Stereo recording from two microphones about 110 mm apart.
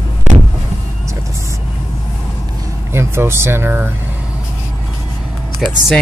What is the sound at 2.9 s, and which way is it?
Speech, 25° right (ahead or behind).